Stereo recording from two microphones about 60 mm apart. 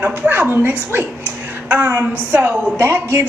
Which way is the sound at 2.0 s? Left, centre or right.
Right.